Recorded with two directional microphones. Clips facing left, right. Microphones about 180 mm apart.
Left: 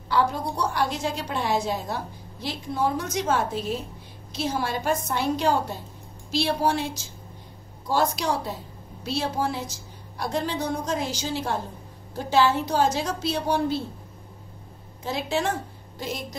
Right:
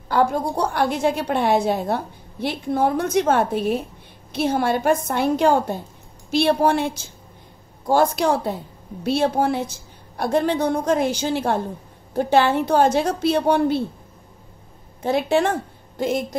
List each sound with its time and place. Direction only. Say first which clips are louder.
0.1 s a woman's voice: right 5 dB; 50° right (ahead or behind)
15.0 s a woman's voice: right 8 dB; 55° right (ahead or behind)